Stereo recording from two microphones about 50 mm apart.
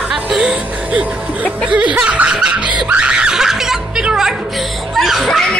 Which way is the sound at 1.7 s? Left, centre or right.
Right.